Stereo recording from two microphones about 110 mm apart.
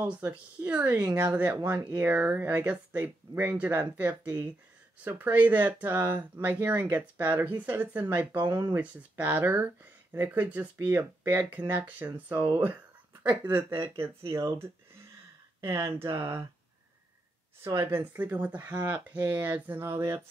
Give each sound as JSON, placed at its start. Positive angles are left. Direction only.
{"t": 0.0, "sound": "speech", "side_deg": -15}
{"t": 1.0, "sound": "speech", "side_deg": -30}
{"t": 1.3, "sound": "speech", "side_deg": -15}
{"t": 13.7, "sound": "speech", "side_deg": -40}
{"t": 14.3, "sound": "speech", "side_deg": -25}
{"t": 17.7, "sound": "speech", "side_deg": -20}